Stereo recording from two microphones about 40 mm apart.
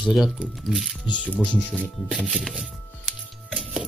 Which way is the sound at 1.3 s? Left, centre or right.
Left.